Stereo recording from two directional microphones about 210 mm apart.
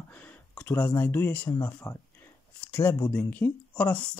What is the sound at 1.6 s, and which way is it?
Speech, 10° left (ahead or behind).